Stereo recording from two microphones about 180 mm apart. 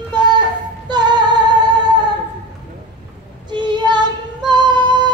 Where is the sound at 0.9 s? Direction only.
25° right (ahead or behind).